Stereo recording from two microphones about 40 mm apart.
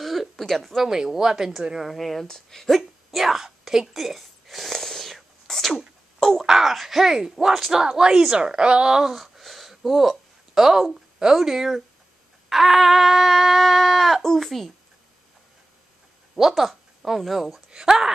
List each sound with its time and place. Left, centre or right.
0.0 s a sound: centre
0.8 s speech: centre
1.9 s a sound: centre
2.2 s speech: centre
2.8 s whispering: centre
6.1 s wail: centre
6.4 s speech: centre; by 8.9 s right
8.9 s speech: centre
9.2 s a sound: centre
10.5 s speech: centre
12.4 s a sound: centre
16.3 s a woman's voice: centre
17.8 s speech: centre